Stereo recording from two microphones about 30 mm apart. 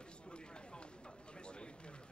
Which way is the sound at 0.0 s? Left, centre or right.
Left.